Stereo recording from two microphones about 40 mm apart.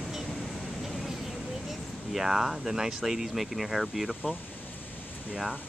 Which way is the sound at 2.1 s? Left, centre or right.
Centre.